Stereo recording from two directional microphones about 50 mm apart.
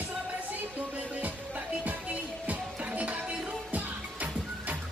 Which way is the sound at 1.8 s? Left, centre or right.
Right.